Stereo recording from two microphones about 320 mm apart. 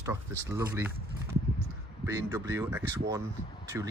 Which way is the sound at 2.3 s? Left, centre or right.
Centre.